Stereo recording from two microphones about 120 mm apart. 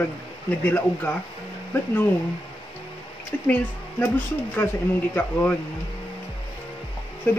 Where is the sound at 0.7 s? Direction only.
15° left (ahead or behind).